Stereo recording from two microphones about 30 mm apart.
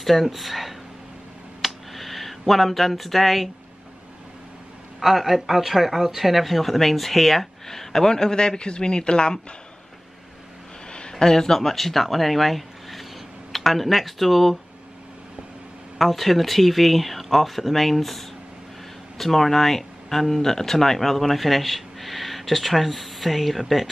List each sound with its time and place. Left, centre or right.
0.0 s speech: centre
1.6 s a sound: centre
5.0 s speech: centre
8.1 s speech: left
10.9 s speech: left; by 14.6 s centre
16.0 s speech: centre